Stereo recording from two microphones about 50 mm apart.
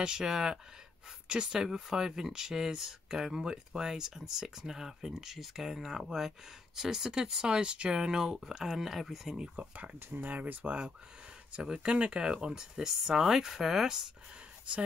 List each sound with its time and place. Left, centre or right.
0.0 s speech: centre
9.9 s speech: right; by 14.0 s centre